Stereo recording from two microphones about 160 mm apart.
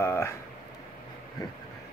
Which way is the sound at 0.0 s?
15° left (ahead or behind).